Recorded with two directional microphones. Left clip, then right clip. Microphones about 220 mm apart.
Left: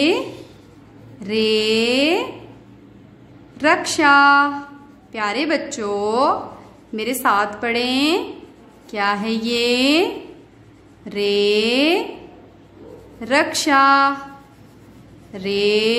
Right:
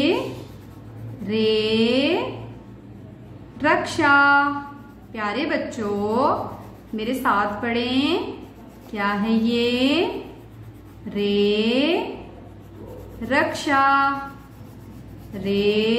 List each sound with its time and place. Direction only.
0.2 s a sound: centre (ahead or behind)
1.2 s mantra: 45° left (ahead or behind)
3.5 s a woman's voice: 45° left (ahead or behind)
6.3 s speech: centre (ahead or behind)
7.0 s a woman's voice: 50° left (ahead or behind)
11.1 s a woman's voice: 45° left (ahead or behind)
13.2 s a woman's voice: 50° left (ahead or behind)
15.3 s a woman's voice: 50° left (ahead or behind)